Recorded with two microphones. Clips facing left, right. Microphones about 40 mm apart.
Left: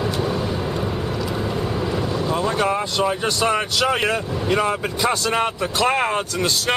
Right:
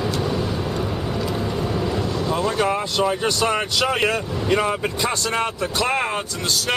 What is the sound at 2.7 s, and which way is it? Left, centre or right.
Speech, centre.